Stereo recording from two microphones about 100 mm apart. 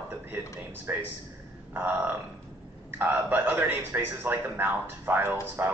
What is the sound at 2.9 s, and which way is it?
A man's voice, 20° right (ahead or behind).